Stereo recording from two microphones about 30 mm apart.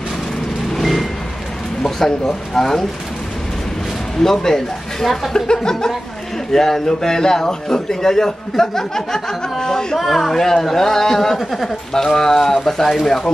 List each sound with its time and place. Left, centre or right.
0.7 s music: centre
2.0 s a man's voice: centre
4.2 s a man's voice: centre
5.0 s speech: centre
5.3 s a man's voice: centre
9.9 s speech: centre
10.3 s a man's voice: centre
11.9 s a man's voice: centre